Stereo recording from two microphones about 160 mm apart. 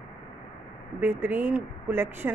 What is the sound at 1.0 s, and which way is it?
Speech, 10° right (ahead or behind).